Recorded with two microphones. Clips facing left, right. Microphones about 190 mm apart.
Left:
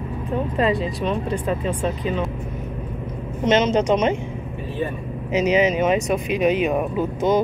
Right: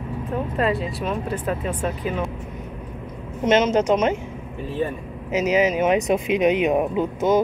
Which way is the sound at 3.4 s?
5° right (ahead or behind).